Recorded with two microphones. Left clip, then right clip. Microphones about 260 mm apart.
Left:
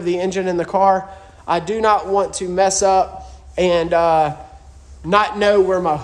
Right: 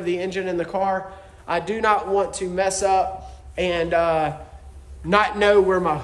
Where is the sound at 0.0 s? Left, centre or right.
Left.